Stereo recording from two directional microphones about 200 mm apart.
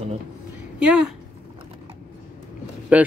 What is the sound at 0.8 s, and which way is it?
Speech, 5° right (ahead or behind).